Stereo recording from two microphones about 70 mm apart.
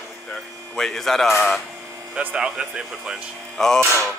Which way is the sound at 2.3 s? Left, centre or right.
Centre.